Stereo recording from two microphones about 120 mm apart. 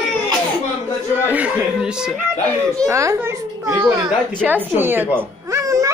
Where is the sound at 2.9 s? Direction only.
25° right (ahead or behind).